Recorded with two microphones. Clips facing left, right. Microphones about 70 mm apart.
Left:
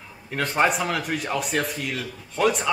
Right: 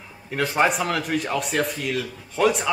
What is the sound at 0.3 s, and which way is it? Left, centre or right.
A man's voice, centre.